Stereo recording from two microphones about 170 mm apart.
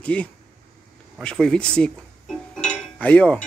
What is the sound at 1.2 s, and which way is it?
Chink, 5° left (ahead or behind).